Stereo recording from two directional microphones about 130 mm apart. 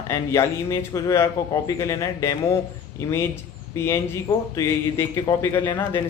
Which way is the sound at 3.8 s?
20° left (ahead or behind).